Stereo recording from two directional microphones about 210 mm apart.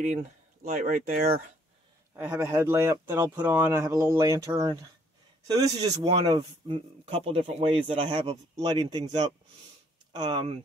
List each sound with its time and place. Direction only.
0.7 s speech: 35° right (ahead or behind)
2.1 s speech: 10° right (ahead or behind)